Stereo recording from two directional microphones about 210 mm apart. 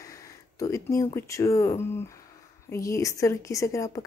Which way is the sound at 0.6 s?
15° left (ahead or behind).